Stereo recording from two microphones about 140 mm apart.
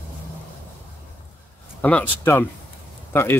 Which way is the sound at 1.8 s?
10° left (ahead or behind).